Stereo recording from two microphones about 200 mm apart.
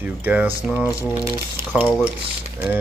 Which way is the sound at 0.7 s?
15° left (ahead or behind).